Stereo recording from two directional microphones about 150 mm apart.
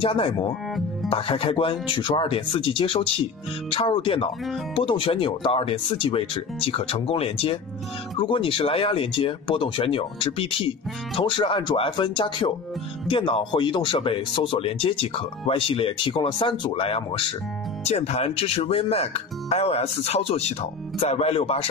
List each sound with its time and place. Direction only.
0.0 s speech: 35° left (ahead or behind)